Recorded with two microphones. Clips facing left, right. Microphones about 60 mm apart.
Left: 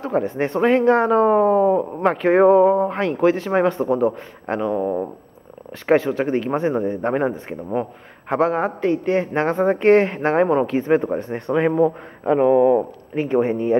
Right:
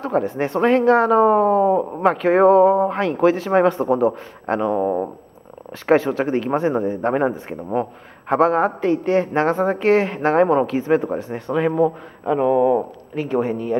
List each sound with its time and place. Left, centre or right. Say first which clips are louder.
0.0 s speech: even; centre
1.9 s speech: right 1 dB; centre
2.2 s speech: even; centre; by 13.6 s left